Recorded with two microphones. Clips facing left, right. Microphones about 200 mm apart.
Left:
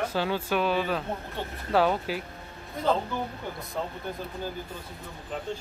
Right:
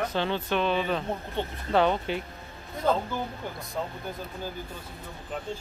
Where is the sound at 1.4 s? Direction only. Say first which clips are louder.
Right 4 dB; 20° right (ahead or behind).